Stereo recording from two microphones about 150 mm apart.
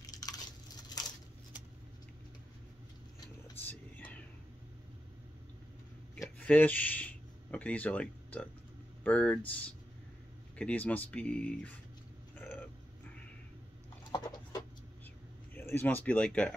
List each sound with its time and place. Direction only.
0.0 s a sound: 25° left (ahead or behind)
3.9 s whispering: 10° left (ahead or behind)
6.2 s a sound: 10° left (ahead or behind)
9.0 s speech: 10° left (ahead or behind)
12.4 s cat: 10° left (ahead or behind)
15.5 s speech: 15° left (ahead or behind)